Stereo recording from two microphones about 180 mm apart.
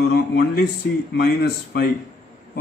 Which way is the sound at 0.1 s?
65° left (ahead or behind).